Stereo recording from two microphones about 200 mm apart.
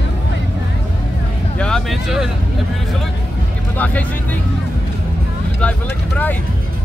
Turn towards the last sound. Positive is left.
turn(degrees=5)  # may be behind; listen again after turning